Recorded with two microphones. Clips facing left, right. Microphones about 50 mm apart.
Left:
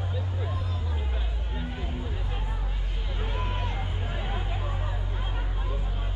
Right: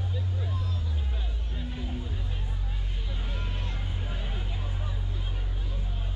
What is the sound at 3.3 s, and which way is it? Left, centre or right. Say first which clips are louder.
Vehicle: left 8 dB; left.